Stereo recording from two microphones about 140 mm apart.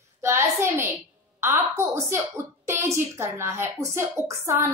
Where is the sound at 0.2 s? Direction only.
20° right (ahead or behind).